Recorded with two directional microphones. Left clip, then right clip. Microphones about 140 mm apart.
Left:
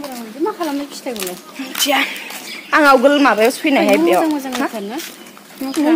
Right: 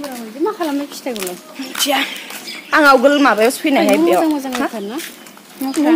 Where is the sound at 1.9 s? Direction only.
Centre (ahead or behind).